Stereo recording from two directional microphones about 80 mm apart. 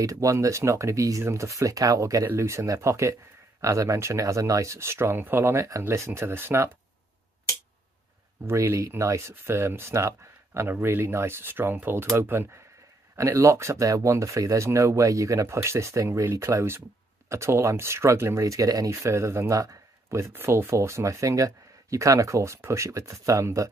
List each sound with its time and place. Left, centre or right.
0.0 s speech: right
8.5 s speech: right
9.3 s speech: right
10.7 s speech: right